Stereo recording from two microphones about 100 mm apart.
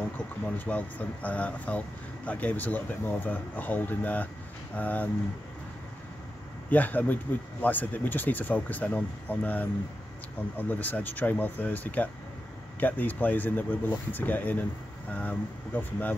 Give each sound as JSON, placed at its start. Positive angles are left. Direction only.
{"t": 0.6, "sound": "speech", "side_deg": 15}
{"t": 6.7, "sound": "speech", "side_deg": 15}